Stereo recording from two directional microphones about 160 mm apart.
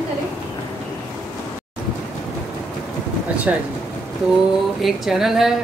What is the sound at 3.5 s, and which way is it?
Speech, 10° right (ahead or behind).